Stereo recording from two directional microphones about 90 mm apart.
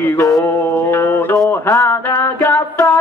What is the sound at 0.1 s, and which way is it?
Mantra, 35° left (ahead or behind).